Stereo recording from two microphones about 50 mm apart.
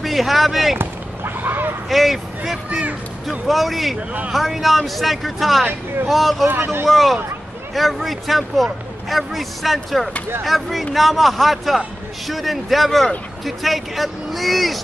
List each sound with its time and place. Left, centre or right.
0.0 s speech: centre
0.7 s basketball bounce: right
1.9 s speech: centre
6.4 s speech: right
6.9 s speech: centre